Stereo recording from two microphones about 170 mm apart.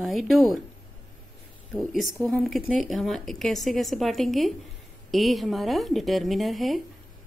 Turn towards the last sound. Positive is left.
turn(degrees=0)  # may be behind; listen again after turning